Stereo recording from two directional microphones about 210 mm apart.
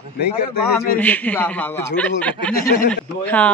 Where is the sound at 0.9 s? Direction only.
10° left (ahead or behind).